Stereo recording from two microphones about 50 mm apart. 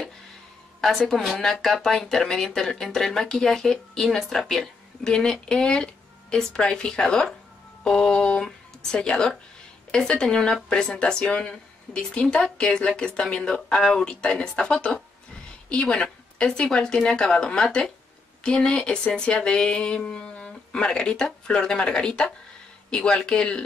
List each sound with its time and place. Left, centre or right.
0.7 s a woman's voice: centre
5.1 s speech: centre